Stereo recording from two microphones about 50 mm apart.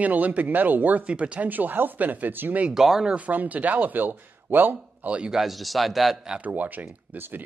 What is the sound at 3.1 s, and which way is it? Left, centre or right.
Speech, right.